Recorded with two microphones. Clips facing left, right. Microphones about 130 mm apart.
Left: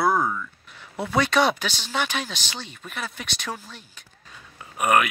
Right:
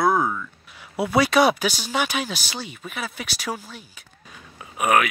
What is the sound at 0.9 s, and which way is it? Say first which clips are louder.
Speech: right 3 dB; 10° right (ahead or behind).